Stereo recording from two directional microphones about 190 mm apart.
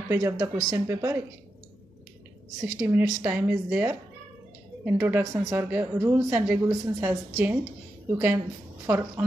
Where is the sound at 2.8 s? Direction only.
15° right (ahead or behind).